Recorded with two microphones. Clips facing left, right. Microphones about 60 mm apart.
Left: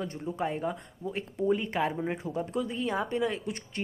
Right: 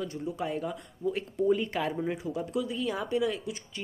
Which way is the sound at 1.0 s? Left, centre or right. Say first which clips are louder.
Right 2 dB; centre.